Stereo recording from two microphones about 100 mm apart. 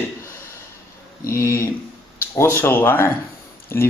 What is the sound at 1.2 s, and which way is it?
Speech, 30° left (ahead or behind).